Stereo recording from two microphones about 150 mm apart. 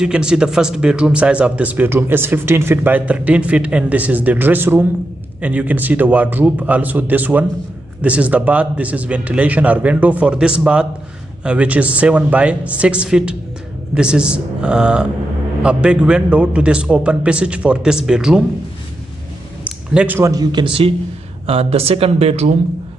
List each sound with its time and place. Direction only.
0.0 s speech: 5° right (ahead or behind)
19.6 s a sound: 10° right (ahead or behind)
20.2 s a man's voice: 25° right (ahead or behind); by 22.5 s 45° right (ahead or behind)